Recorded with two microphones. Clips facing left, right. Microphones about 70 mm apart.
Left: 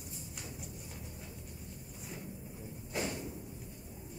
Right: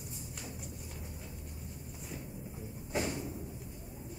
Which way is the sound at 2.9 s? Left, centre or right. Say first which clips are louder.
Right 3 dB; centre.